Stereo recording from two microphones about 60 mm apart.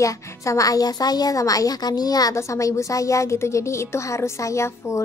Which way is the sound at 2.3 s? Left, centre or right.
Left.